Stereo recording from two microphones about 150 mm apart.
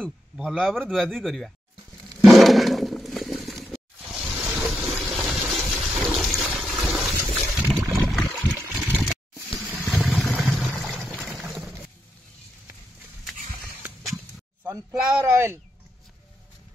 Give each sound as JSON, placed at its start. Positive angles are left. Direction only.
{"t": 0.0, "sound": "speech", "side_deg": -5}
{"t": 2.2, "sound": "a sound", "side_deg": 0}
{"t": 14.7, "sound": "speech", "side_deg": -15}